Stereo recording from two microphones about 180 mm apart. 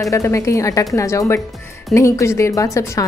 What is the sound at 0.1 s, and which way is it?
Speech, 15° left (ahead or behind).